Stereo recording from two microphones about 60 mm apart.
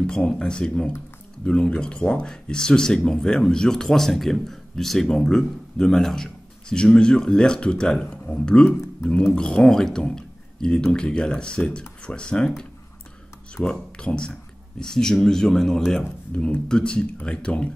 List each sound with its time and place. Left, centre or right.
0.0 s speech: centre
13.7 s speech: centre
16.3 s speech: centre